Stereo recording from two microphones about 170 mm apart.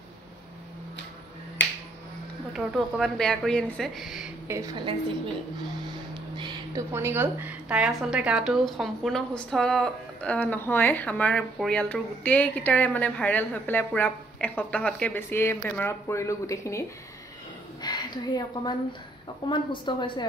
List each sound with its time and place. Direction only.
2.5 s a woman's voice: centre (ahead or behind)
4.5 s a woman's voice: 20° right (ahead or behind)
6.1 s a sound: 30° right (ahead or behind)
6.9 s speech: 15° right (ahead or behind); by 16.8 s 15° left (ahead or behind)
17.8 s a woman's voice: 25° left (ahead or behind)